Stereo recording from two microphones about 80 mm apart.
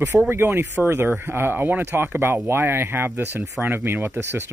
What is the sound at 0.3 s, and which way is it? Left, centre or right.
Speech, right.